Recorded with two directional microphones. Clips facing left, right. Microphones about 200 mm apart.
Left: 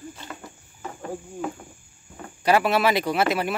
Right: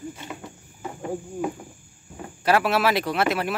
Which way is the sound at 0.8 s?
15° right (ahead or behind).